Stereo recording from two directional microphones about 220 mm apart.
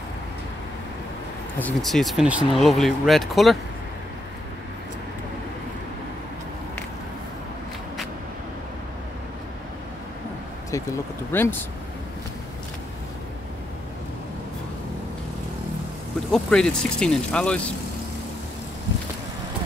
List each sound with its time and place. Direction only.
1.6 s speech: centre (ahead or behind)
11.3 s speech: 10° left (ahead or behind)
16.3 s speech: 5° left (ahead or behind)